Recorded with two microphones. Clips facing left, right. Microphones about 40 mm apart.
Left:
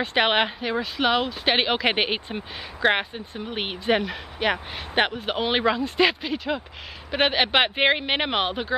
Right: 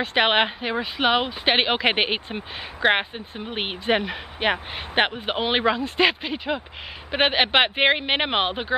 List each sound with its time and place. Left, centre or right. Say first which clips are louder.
0.0 s speech: right 1 dB; centre
6.3 s speech: even; centre